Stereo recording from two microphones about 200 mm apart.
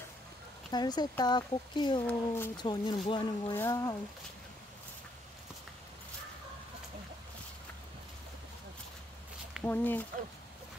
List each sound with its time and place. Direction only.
0.7 s speech: 20° left (ahead or behind)
2.0 s speech: 10° left (ahead or behind)
2.5 s speech: 20° left (ahead or behind)
9.7 s speech: 10° left (ahead or behind)